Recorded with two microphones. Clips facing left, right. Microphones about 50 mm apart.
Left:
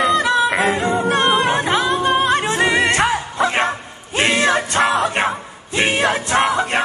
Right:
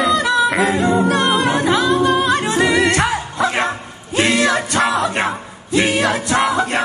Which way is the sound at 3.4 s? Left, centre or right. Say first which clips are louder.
Even; left.